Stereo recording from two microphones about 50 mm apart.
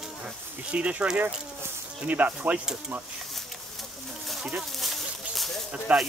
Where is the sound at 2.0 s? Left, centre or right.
Right.